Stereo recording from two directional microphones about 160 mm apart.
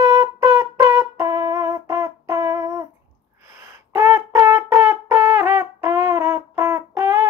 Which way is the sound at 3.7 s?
15° right (ahead or behind).